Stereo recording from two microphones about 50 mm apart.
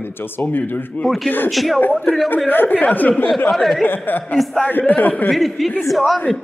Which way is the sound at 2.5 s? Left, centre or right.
Left.